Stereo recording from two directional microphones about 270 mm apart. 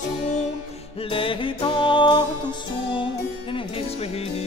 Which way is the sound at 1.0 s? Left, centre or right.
Centre.